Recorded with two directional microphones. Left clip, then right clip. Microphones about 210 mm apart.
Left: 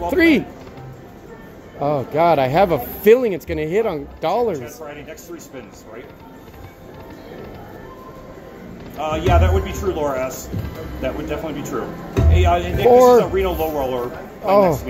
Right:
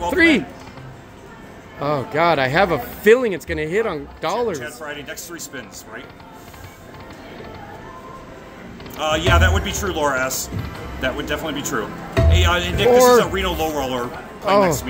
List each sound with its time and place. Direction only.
0.1 s speech: centre (ahead or behind)
1.8 s speech: centre (ahead or behind)
4.6 s speech: 70° right (ahead or behind)
8.9 s speech: 65° right (ahead or behind)
14.4 s speech: centre (ahead or behind)